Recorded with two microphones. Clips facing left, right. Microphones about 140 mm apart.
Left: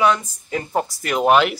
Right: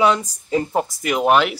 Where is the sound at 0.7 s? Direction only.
15° right (ahead or behind).